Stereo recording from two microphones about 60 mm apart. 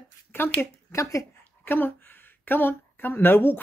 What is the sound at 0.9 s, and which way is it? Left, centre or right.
Speech, left.